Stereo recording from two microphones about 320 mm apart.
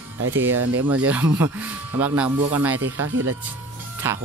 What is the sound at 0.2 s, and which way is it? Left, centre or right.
Speech, right.